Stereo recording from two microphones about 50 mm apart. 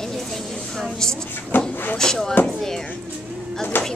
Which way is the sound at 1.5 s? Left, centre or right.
Left.